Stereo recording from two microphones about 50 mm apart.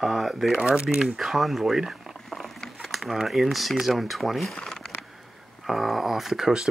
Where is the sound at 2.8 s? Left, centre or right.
Centre.